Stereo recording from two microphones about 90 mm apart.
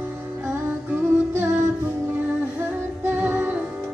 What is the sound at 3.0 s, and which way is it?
Music, 20° right (ahead or behind).